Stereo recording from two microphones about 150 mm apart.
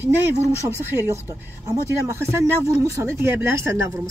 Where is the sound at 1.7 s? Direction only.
20° right (ahead or behind).